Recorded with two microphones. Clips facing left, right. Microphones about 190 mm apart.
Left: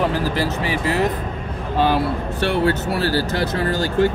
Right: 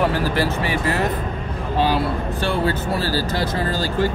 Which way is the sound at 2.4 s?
70° left (ahead or behind).